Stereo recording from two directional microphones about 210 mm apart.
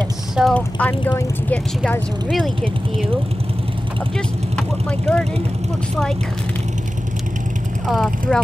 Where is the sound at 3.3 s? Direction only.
25° right (ahead or behind).